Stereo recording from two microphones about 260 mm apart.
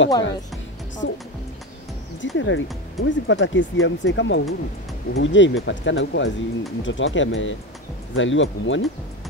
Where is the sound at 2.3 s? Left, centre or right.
Left.